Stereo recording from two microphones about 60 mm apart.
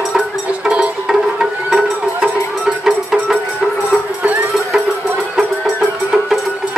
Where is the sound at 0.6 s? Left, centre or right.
Centre.